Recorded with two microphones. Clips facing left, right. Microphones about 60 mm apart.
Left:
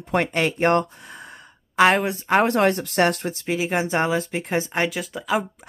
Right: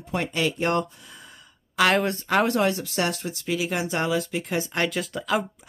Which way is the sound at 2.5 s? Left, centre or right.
Left.